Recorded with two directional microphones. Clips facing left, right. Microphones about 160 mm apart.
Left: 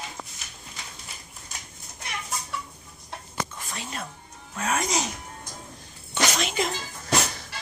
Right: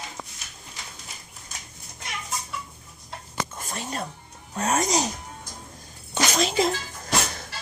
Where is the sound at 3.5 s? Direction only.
45° right (ahead or behind).